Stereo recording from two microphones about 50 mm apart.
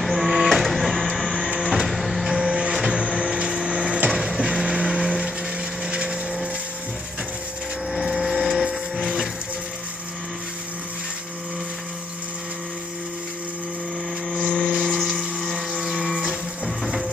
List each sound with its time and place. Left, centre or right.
0.0 s printer: centre
1.6 s music: centre
4.1 s music: centre
4.5 s vehicle: centre
5.9 s a sound: right
8.0 s a sound: centre
8.9 s music: centre
14.4 s a sound: centre
14.7 s helicopter: centre
15.7 s music: centre